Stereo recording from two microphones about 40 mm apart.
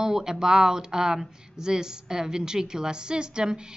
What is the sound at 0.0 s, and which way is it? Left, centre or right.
Speech, centre.